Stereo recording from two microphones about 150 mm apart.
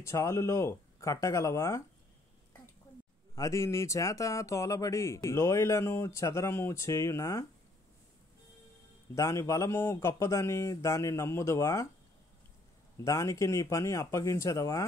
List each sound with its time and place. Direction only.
0.0 s speech: 20° left (ahead or behind)
3.3 s speech: 20° left (ahead or behind)
9.1 s speech: 20° left (ahead or behind)
13.0 s speech: 20° left (ahead or behind)